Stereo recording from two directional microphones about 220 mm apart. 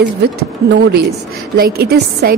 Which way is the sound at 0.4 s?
50° right (ahead or behind).